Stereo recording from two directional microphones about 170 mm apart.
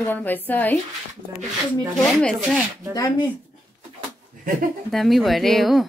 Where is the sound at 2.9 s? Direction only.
25° left (ahead or behind).